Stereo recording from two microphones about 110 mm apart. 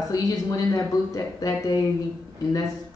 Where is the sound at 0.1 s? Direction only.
30° left (ahead or behind).